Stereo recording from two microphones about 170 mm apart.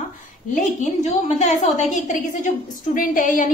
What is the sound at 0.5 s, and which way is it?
A woman's voice, 45° left (ahead or behind).